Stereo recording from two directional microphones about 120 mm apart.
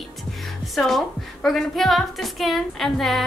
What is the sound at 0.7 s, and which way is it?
A woman's voice, centre (ahead or behind).